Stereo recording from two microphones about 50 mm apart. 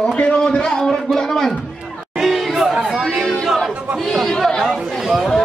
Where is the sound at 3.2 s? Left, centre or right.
Centre.